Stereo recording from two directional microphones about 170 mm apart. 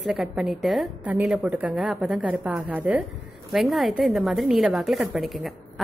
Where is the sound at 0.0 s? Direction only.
Centre (ahead or behind).